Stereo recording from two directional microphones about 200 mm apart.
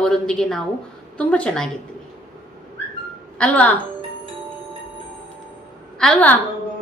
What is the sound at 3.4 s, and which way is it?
Speech, 5° left (ahead or behind).